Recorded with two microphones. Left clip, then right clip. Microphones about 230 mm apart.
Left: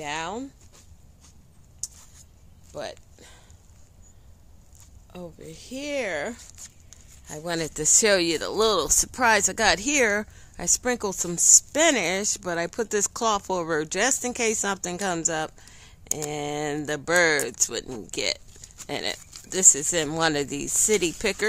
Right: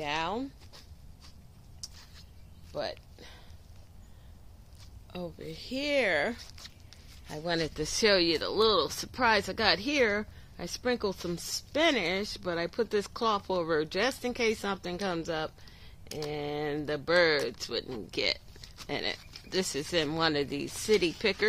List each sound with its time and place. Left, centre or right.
0.0 s speech: centre
2.7 s a sound: centre
5.1 s speech: centre
7.2 s speech: left